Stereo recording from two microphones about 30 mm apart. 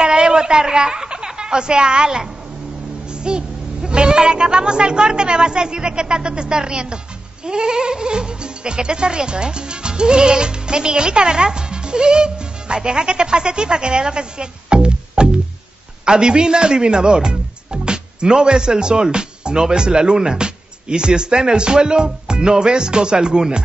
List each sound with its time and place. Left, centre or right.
0.0 s speech: right
3.3 s speech: right